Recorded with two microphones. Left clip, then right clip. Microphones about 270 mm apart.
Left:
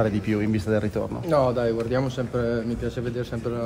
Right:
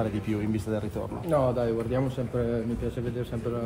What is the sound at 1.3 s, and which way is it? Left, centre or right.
Speech, centre.